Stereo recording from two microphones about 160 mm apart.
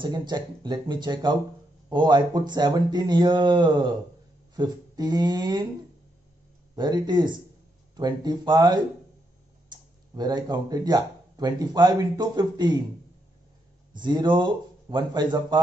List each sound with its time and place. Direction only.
0.0 s speech: 25° right (ahead or behind)
6.7 s speech: 25° right (ahead or behind)
13.9 s speech: 30° right (ahead or behind)